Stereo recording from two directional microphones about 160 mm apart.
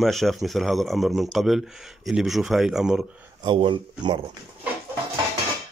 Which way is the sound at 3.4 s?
30° right (ahead or behind).